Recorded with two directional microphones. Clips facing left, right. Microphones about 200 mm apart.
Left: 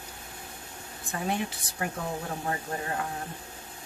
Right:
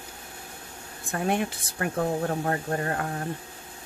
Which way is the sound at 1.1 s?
60° right (ahead or behind).